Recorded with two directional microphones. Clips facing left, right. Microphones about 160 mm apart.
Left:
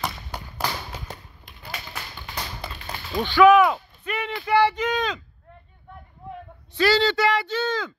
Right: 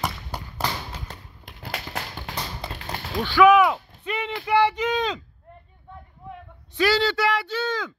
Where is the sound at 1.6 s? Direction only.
75° right (ahead or behind).